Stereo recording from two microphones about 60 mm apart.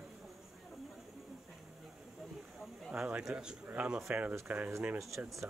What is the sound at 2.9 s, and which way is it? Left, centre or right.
Speech, centre.